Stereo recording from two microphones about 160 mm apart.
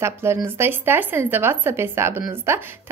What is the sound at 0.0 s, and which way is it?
Speech, 15° right (ahead or behind).